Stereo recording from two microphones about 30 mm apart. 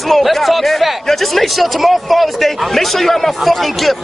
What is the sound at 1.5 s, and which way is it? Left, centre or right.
Speech, centre.